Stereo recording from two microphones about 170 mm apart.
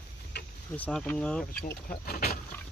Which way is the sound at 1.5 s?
60° left (ahead or behind).